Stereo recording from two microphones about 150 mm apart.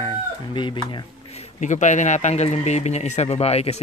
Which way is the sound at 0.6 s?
30° left (ahead or behind).